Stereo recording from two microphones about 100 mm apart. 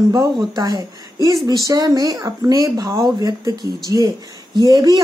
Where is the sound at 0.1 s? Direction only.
40° right (ahead or behind).